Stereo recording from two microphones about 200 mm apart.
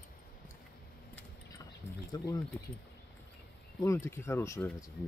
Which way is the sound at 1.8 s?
40° left (ahead or behind).